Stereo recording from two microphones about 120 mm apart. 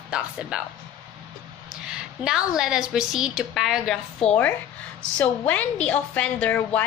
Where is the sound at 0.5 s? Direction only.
5° right (ahead or behind).